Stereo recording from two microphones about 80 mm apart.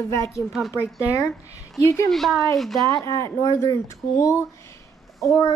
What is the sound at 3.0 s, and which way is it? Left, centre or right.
A child's voice, left.